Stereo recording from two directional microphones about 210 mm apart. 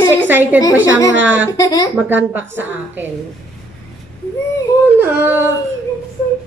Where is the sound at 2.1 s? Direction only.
10° right (ahead or behind).